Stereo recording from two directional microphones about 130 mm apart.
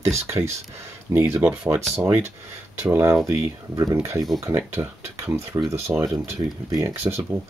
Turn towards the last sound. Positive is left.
turn(degrees=-20)  # may be behind; listen again after turning